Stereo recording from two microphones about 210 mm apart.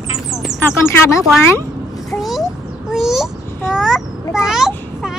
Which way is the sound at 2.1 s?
Centre (ahead or behind).